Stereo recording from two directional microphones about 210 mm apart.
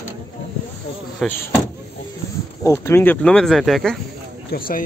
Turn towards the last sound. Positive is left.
turn(degrees=45)  # may be behind; listen again after turning